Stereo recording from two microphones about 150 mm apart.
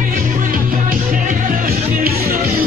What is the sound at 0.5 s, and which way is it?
Music, 65° right (ahead or behind).